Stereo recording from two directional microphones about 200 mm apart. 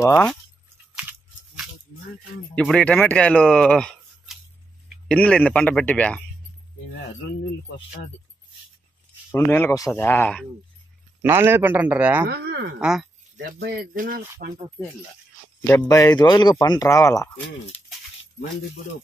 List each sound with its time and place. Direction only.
0.0 s speech: 5° left (ahead or behind)
2.5 s a man's voice: 5° left (ahead or behind)
9.3 s speech: 10° left (ahead or behind)
11.2 s a man's voice: 10° right (ahead or behind)
13.6 s speech: 45° right (ahead or behind)
15.6 s speech: 15° left (ahead or behind)